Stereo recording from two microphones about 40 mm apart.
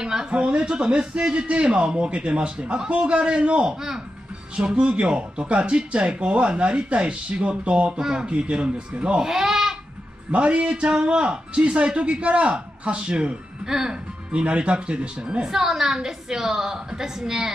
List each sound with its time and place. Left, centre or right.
0.0 s a woman's voice: centre
0.3 s a man's voice: right
8.0 s a woman's voice: centre
8.3 s a man's voice: right
9.3 s goat: centre
10.3 s a man's voice: right
13.7 s a woman's voice: centre
14.3 s a man's voice: right
15.4 s a woman's voice: centre